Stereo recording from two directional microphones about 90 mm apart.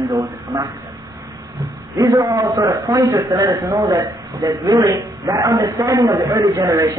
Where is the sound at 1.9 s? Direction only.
30° right (ahead or behind).